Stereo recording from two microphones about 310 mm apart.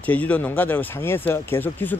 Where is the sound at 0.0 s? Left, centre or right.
Centre.